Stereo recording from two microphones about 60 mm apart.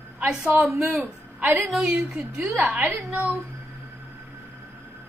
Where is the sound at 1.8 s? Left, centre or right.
Centre.